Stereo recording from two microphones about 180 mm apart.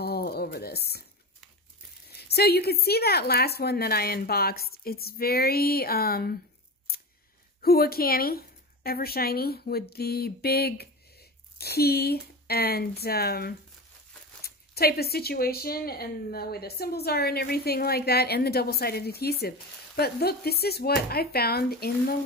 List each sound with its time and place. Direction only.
0.0 s a sound: 60° left (ahead or behind)
2.0 s speech: 60° left (ahead or behind)
7.6 s a woman's voice: 60° left (ahead or behind)